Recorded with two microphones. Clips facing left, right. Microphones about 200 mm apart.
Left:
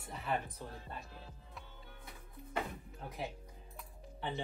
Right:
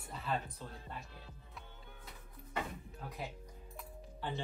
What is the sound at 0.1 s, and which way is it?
Speech, 20° left (ahead or behind).